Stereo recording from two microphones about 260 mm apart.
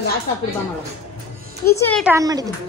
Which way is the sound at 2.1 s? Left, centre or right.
Centre.